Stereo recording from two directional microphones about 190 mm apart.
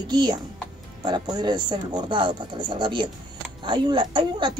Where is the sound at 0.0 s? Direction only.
20° right (ahead or behind).